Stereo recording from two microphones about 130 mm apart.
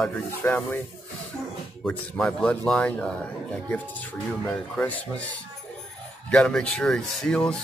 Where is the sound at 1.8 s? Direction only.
5° left (ahead or behind).